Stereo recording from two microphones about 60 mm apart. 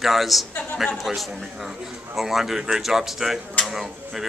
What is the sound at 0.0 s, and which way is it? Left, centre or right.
Speech, centre.